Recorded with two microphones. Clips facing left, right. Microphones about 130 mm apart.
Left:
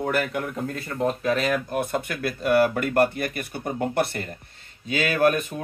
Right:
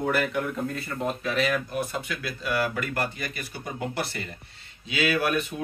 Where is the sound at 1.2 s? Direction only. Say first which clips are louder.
Left 3 dB; 45° left (ahead or behind).